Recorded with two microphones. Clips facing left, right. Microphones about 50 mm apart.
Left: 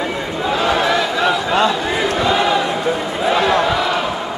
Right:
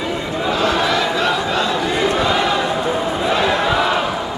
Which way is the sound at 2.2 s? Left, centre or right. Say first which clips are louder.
Left 1 dB; centre.